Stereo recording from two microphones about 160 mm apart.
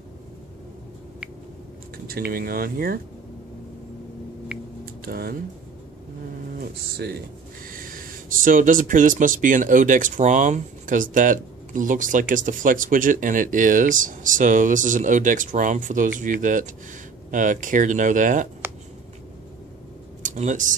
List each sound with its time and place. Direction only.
2.0 s speech: 70° right (ahead or behind)
4.5 s a sound: 10° right (ahead or behind)
5.0 s speech: 65° right (ahead or behind)
6.6 s speech: 80° right
7.7 s speech: 60° right (ahead or behind)
20.2 s speech: 50° right (ahead or behind)